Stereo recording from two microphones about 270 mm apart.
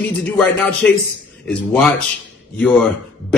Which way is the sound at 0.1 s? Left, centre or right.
Centre.